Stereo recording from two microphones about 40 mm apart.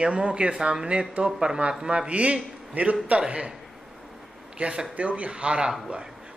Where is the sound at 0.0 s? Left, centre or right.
Right.